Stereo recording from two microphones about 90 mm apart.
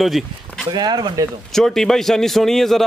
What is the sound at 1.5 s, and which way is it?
Speech, 5° left (ahead or behind).